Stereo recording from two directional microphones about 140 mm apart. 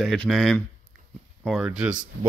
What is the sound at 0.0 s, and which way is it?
Speech, centre (ahead or behind).